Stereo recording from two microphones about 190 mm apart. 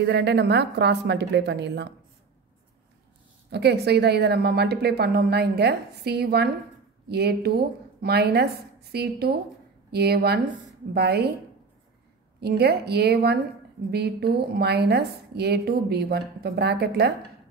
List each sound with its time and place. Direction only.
0.0 s a woman's voice: 65° right (ahead or behind)
3.5 s a woman's voice: 60° right (ahead or behind)
12.4 s a woman's voice: 60° right (ahead or behind)